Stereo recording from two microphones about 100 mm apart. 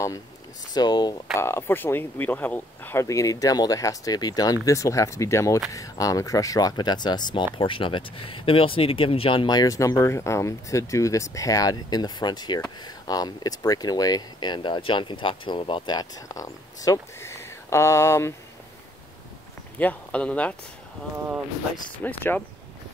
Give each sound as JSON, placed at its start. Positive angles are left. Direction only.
{"t": 0.7, "sound": "speech", "side_deg": 45}
{"t": 1.4, "sound": "speech", "side_deg": 25}
{"t": 7.5, "sound": "speech", "side_deg": 60}
{"t": 9.5, "sound": "speech", "side_deg": 40}
{"t": 19.8, "sound": "speech", "side_deg": 15}
{"t": 22.0, "sound": "speech", "side_deg": 20}